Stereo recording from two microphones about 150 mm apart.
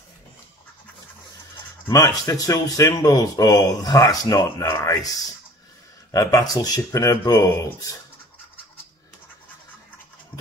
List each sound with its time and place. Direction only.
1.9 s speech: 25° left (ahead or behind)
6.1 s speech: 25° left (ahead or behind)